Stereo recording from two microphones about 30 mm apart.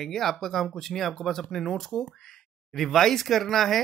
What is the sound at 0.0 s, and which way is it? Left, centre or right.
Speech, centre.